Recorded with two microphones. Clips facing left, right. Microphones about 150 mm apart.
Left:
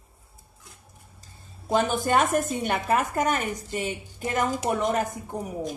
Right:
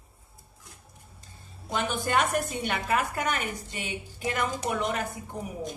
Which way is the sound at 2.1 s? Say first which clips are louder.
Left 1 dB; 45° left (ahead or behind).